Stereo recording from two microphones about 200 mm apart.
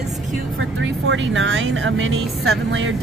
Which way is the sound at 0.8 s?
70° right (ahead or behind).